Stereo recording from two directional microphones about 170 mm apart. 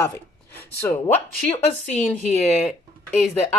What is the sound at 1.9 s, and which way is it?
Speech, 40° left (ahead or behind).